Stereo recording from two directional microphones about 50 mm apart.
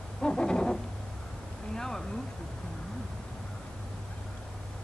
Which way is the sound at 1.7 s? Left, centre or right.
Centre.